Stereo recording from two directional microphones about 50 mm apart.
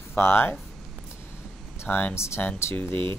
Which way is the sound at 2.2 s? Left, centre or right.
Left.